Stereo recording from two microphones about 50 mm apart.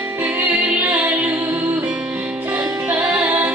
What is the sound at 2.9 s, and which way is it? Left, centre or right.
Music, right.